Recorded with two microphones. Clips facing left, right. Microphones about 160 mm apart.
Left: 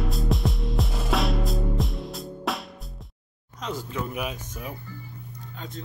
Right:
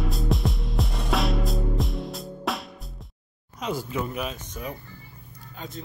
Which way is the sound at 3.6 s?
10° right (ahead or behind).